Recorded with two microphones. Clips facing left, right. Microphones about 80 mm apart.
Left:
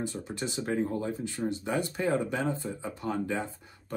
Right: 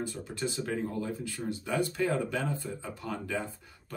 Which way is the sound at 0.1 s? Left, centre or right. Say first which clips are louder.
Left 1 dB; left.